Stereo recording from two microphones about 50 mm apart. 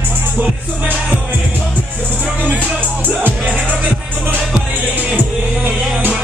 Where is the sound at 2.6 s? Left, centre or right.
Right.